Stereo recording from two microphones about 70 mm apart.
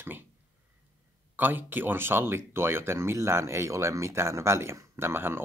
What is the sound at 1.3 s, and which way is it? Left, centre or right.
Speech, right.